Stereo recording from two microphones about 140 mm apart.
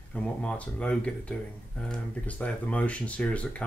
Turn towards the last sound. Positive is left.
turn(degrees=10)  # may be behind; listen again after turning